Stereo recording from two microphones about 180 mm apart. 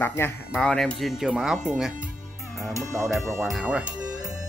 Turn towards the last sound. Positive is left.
turn(degrees=-20)  # may be behind; listen again after turning